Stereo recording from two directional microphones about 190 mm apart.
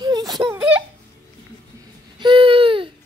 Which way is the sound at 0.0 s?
20° right (ahead or behind).